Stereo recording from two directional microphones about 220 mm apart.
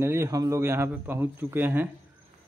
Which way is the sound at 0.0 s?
10° right (ahead or behind).